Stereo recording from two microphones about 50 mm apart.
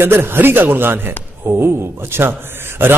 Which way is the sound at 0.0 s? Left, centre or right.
Right.